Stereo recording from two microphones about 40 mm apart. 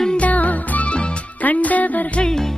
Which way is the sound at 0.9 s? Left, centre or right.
Left.